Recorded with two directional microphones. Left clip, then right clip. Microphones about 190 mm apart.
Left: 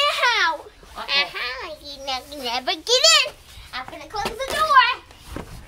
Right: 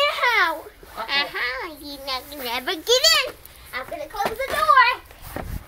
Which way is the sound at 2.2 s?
5° left (ahead or behind).